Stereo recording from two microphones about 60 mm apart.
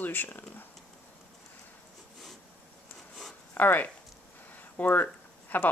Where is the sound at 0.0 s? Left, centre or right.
Left.